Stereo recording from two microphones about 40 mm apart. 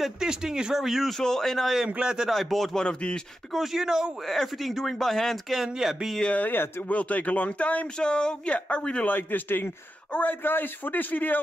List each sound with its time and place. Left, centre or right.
0.2 s speech: centre
0.7 s speech: centre
1.1 s speech: centre
2.0 s a man's voice: centre
2.2 s speech: centre
2.7 s speech: left
3.5 s speech: centre
4.6 s speech: centre
5.8 s speech: centre
6.4 s a man's voice: left
6.9 s speech: left
8.0 s speech: left
9.0 s a man's voice: left